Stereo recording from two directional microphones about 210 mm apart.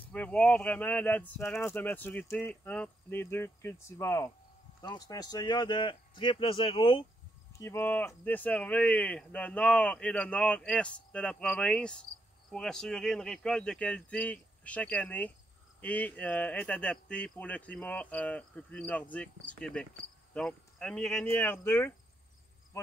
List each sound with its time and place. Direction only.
0.0 s speech: 5° left (ahead or behind); by 7.1 s 25° left (ahead or behind)
7.5 s speech: 10° left (ahead or behind)